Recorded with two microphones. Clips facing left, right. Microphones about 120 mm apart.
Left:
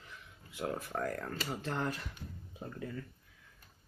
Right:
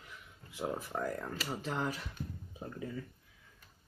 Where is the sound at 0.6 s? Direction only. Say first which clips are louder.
Even; 10° right (ahead or behind).